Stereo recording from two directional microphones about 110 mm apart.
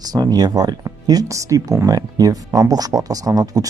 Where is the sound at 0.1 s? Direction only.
35° right (ahead or behind).